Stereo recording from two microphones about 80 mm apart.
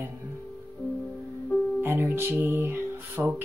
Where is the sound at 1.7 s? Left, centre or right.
Right.